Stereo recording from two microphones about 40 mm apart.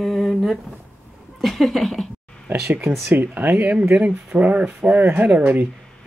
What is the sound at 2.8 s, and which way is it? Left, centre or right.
Speech, centre.